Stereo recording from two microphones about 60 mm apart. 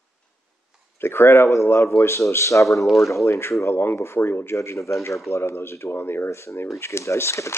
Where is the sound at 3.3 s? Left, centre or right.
Left.